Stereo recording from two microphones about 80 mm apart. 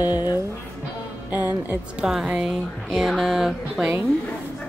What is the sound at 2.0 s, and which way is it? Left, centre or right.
Speech, centre.